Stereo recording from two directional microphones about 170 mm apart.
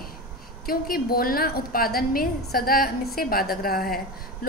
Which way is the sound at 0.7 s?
60° left (ahead or behind).